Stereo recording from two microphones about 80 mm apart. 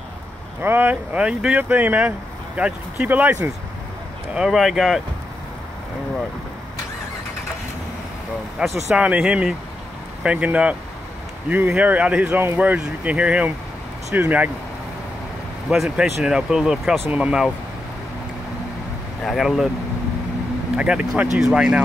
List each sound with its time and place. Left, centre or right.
0.6 s speech: right
1.1 s speech: centre
4.4 s speech: centre
8.6 s speech: centre
15.7 s speech: centre
19.2 s speech: centre
20.7 s speech: centre